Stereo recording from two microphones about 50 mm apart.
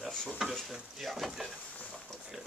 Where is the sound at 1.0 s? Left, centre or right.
Centre.